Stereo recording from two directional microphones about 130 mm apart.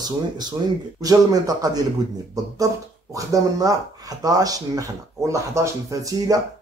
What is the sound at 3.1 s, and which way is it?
Speech, 25° right (ahead or behind).